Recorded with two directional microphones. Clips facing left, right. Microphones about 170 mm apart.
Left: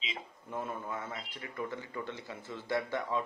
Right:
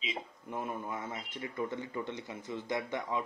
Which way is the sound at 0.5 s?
15° right (ahead or behind).